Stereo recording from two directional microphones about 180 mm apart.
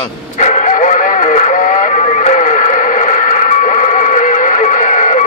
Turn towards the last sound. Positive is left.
turn(degrees=45)  # may be behind; listen again after turning